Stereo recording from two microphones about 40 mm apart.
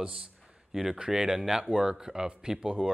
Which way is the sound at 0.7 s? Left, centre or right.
Centre.